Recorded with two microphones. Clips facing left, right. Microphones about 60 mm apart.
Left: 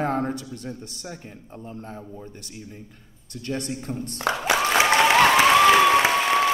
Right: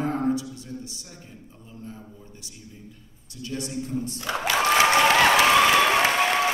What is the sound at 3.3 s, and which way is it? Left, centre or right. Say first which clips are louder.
Speech: left 2 dB; left.